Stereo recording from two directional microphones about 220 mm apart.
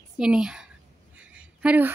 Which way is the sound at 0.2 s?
5° right (ahead or behind).